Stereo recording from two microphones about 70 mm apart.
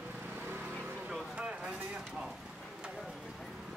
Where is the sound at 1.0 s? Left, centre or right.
Centre.